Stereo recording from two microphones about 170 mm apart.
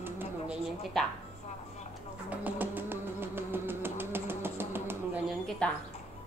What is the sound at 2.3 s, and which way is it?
Music, 10° right (ahead or behind).